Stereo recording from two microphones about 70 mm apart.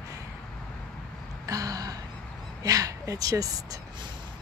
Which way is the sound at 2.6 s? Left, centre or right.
Right.